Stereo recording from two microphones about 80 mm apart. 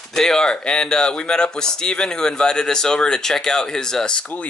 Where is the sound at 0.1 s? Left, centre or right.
Centre.